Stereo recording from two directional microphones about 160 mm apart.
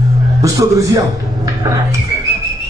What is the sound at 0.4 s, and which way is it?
Speech, 20° right (ahead or behind).